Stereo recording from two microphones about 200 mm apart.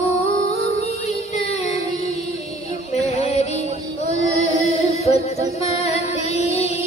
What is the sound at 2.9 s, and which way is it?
Music, 30° left (ahead or behind).